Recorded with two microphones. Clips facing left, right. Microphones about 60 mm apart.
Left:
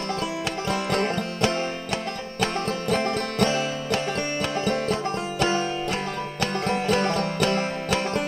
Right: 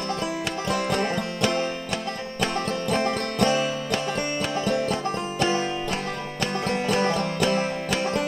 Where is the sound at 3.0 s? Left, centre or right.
Right.